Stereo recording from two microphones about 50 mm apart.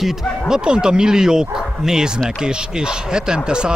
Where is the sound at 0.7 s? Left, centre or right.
Centre.